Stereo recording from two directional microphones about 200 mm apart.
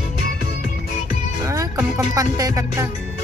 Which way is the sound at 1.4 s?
15° right (ahead or behind).